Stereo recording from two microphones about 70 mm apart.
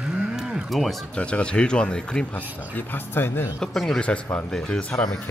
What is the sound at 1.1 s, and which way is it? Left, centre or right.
Speech, centre.